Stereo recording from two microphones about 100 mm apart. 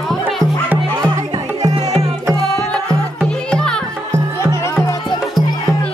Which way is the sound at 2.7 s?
10° left (ahead or behind).